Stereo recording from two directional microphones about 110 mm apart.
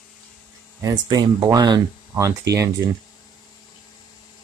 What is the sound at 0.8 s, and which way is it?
Speech, 40° right (ahead or behind).